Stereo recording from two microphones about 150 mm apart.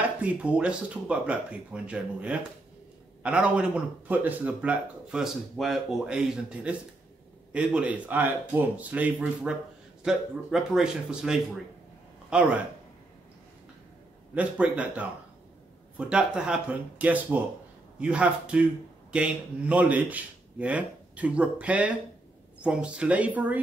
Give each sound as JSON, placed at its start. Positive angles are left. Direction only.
{"t": 0.2, "sound": "a man's voice", "side_deg": -10}
{"t": 14.3, "sound": "a man's voice", "side_deg": -10}